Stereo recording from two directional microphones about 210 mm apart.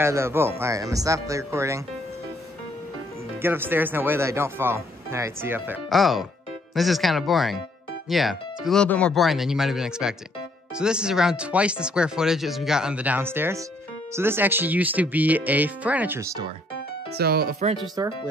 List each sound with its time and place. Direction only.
0.0 s speech: 10° right (ahead or behind)
3.4 s speech: 10° right (ahead or behind)
17.1 s speech: 45° right (ahead or behind)
18.0 s speech: 20° right (ahead or behind)